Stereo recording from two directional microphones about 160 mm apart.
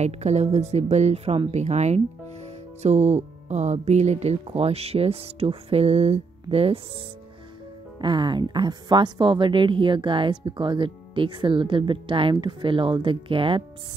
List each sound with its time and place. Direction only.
0.0 s speech: 45° right (ahead or behind)
8.0 s speech: 30° right (ahead or behind)